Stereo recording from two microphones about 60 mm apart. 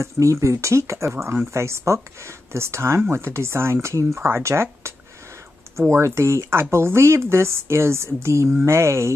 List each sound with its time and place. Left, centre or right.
0.0 s speech: right
1.1 s speech: right
1.5 s speech: right